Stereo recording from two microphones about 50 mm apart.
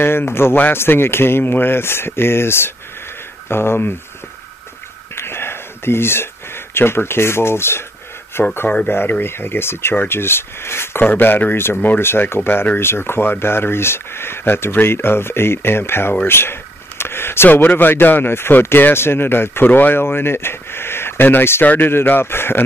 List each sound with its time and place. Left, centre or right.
0.0 s speech: left
5.1 s a sound: left
6.7 s speech: left
11.7 s speech: left
12.0 s speech: left
17.0 s a sound: left
17.5 s speech: left